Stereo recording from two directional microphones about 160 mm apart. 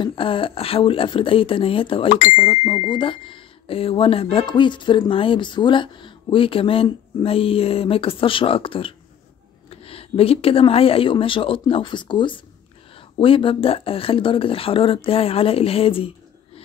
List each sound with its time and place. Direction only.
0.0 s speech: 35° left (ahead or behind)
2.0 s speech: 55° left (ahead or behind)
2.3 s speech: 30° left (ahead or behind)